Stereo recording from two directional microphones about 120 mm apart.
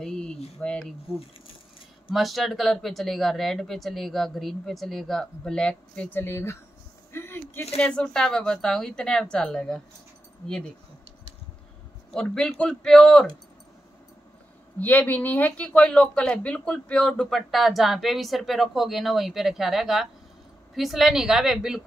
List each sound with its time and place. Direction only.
0.0 s a sound: 5° left (ahead or behind)
0.6 s speech: 5° left (ahead or behind)
2.1 s a woman's voice: centre (ahead or behind)
6.1 s speech: 20° left (ahead or behind)
7.1 s a sound: 20° left (ahead or behind)
7.8 s a woman's voice: 10° left (ahead or behind)
12.1 s a woman's voice: 5° left (ahead or behind)
14.8 s a woman's voice: 15° left (ahead or behind); by 21.8 s 5° right (ahead or behind)